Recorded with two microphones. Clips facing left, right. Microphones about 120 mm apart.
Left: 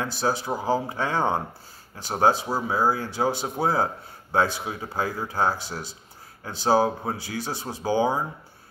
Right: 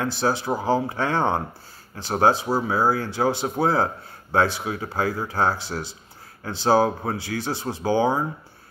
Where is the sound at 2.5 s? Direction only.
25° right (ahead or behind).